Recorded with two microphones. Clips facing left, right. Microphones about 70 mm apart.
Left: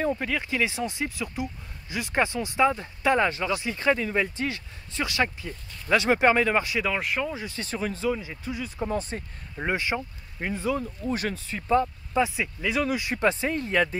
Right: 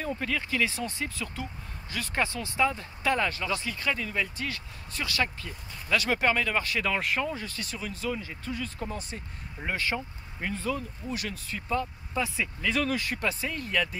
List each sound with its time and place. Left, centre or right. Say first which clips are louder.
0.1 s speech: left 3 dB; left
6.6 s speech: left 2 dB; centre
7.4 s speech: left 6 dB; left
8.1 s speech: left 4 dB; centre
8.8 s speech: left 7 dB; left
9.7 s speech: left 3 dB; centre
10.8 s speech: left 6 dB; left
11.3 s speech: left 8 dB; left; by 13.1 s centre
13.1 s speech: left 7 dB; left